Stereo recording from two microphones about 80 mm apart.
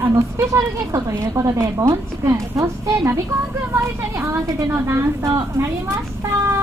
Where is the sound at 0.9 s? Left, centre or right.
Right.